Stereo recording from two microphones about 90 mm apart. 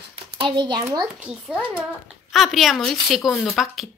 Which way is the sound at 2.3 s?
Centre (ahead or behind).